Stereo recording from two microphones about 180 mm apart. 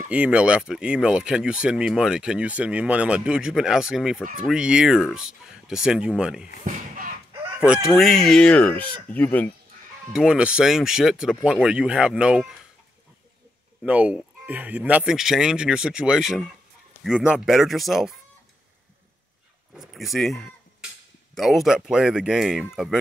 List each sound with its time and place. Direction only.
0.1 s speech: 5° right (ahead or behind)
6.6 s a sound: 50° right (ahead or behind)
7.6 s speech: 5° right (ahead or behind)
10.1 s speech: 5° right (ahead or behind)
13.8 s speech: 10° right (ahead or behind)
19.7 s speech: centre (ahead or behind)